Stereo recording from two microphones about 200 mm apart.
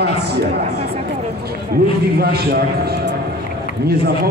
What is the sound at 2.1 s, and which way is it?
Speech, 50° right (ahead or behind).